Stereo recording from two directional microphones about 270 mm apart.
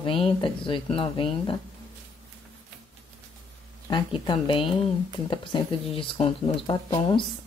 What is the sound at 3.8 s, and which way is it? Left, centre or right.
Speech, centre.